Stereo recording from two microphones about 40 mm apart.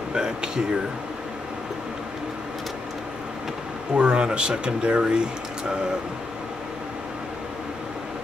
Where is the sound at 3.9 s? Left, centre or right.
Right.